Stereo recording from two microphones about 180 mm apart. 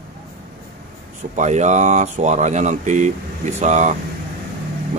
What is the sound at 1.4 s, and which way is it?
Speech, 40° right (ahead or behind).